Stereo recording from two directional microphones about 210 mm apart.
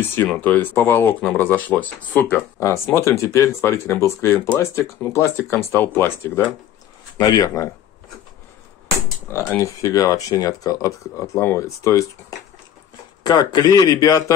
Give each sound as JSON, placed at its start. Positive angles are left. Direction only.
{"t": 0.1, "sound": "speech", "side_deg": 10}
{"t": 9.3, "sound": "a man's voice", "side_deg": 10}